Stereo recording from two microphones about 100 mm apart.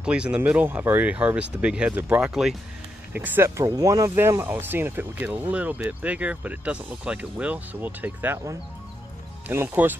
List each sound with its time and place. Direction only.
0.0 s speech: 10° right (ahead or behind)
3.1 s speech: 20° right (ahead or behind)
3.6 s speech: 35° right (ahead or behind)
4.1 s speech: 25° right (ahead or behind)
9.5 s speech: 20° right (ahead or behind)